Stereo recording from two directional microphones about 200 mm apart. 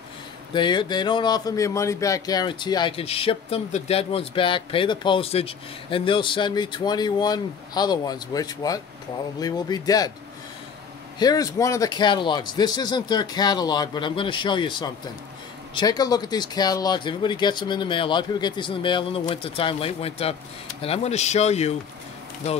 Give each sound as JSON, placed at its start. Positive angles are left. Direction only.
{"t": 0.5, "sound": "speech", "side_deg": 25}
{"t": 11.1, "sound": "speech", "side_deg": 20}